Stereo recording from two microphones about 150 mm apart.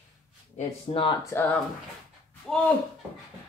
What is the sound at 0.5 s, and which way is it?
Speech, 35° left (ahead or behind).